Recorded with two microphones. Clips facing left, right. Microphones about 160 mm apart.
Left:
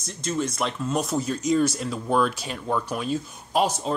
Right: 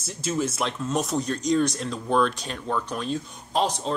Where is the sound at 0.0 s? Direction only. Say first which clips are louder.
Right 1 dB; 5° right (ahead or behind).